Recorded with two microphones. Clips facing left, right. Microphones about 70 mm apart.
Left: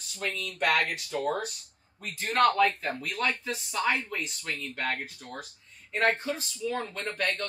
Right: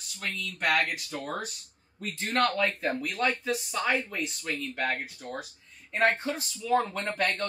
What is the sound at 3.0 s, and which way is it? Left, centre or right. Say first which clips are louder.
A woman's voice: even; centre.